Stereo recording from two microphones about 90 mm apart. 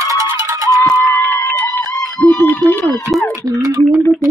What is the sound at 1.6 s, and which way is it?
Music, 40° left (ahead or behind).